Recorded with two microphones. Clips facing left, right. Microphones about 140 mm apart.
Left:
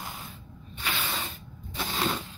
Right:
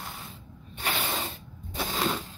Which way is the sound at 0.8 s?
35° right (ahead or behind).